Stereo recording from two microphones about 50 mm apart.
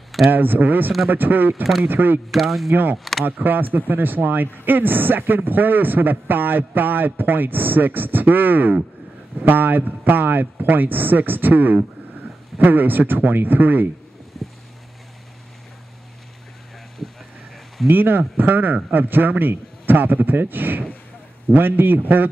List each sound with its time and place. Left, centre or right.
0.3 s speech: right
2.3 s speech: centre
2.7 s speech: right
14.3 s boat: centre
17.8 s speech: right